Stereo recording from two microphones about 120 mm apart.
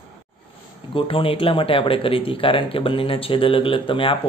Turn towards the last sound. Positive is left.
turn(degrees=45)  # may be behind; listen again after turning